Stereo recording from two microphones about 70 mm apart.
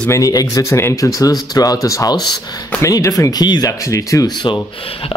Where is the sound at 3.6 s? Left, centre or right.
Left.